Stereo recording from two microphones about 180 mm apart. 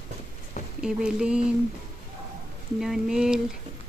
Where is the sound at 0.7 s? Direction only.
5° right (ahead or behind).